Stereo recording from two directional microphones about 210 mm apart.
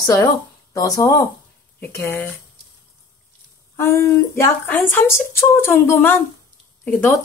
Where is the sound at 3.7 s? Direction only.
10° left (ahead or behind).